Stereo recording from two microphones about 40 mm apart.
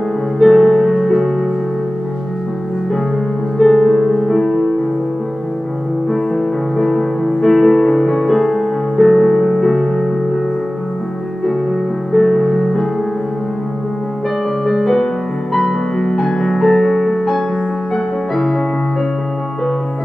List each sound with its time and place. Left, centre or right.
0.4 s music: centre
3.5 s music: centre
6.0 s music: centre
12.1 s music: centre
14.7 s music: centre